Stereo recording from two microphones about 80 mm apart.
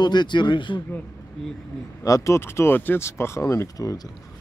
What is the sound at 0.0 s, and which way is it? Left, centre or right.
Speech, left.